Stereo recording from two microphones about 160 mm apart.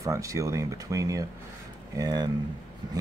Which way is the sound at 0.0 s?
20° right (ahead or behind).